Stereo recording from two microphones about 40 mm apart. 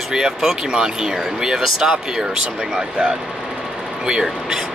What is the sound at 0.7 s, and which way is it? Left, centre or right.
Speech, centre.